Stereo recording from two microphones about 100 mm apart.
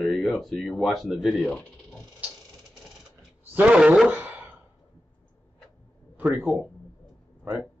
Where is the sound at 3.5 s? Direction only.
10° right (ahead or behind).